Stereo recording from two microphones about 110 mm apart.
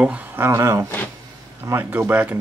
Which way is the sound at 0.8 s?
15° left (ahead or behind).